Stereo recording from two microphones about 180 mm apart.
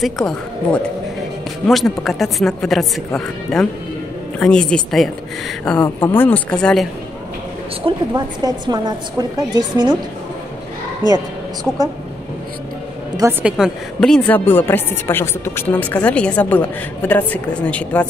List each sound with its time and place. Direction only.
0.0 s a woman's voice: 5° left (ahead or behind)
7.8 s a woman's voice: 20° right (ahead or behind)
13.4 s a woman's voice: 5° right (ahead or behind)